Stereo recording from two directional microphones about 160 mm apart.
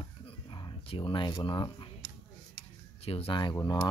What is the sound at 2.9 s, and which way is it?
Speech, 40° left (ahead or behind).